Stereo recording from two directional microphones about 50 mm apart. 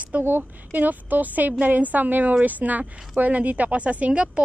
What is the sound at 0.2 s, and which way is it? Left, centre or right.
A woman's voice, right.